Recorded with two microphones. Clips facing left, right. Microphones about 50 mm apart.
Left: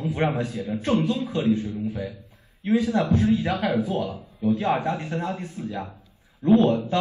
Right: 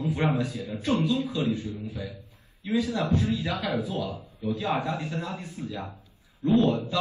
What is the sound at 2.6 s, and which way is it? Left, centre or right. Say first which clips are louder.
A man's voice: left 5 dB; left.